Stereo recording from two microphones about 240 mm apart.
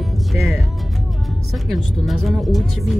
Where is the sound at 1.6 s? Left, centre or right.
Centre.